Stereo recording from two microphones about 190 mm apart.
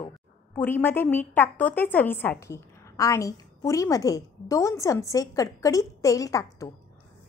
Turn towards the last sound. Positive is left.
turn(degrees=15)  # may be behind; listen again after turning